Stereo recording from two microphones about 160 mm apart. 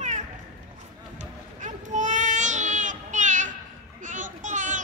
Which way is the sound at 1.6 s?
50° right (ahead or behind).